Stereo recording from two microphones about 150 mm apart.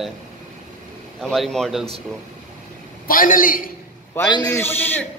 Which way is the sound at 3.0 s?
70° left (ahead or behind).